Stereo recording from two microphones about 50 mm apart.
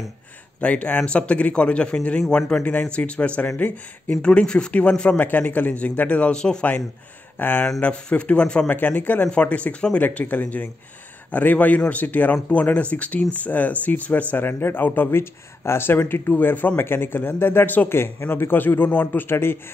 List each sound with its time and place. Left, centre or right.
0.6 s a man's voice: left
4.1 s a man's voice: left
5.1 s speech: left
6.3 s a man's voice: centre
7.3 s speech: left
7.8 s a man's voice: left
8.6 s a man's voice: left
14.4 s speech: left
15.0 s speech: left